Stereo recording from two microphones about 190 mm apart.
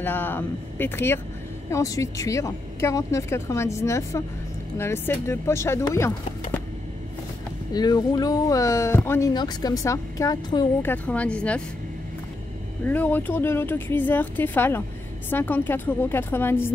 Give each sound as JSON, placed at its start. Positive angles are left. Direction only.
{"t": 0.0, "sound": "speech", "side_deg": 10}
{"t": 7.7, "sound": "speech", "side_deg": 20}
{"t": 10.8, "sound": "speech", "side_deg": 10}
{"t": 12.8, "sound": "speech", "side_deg": 10}